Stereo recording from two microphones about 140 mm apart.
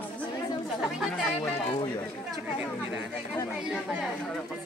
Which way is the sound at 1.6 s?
40° left (ahead or behind).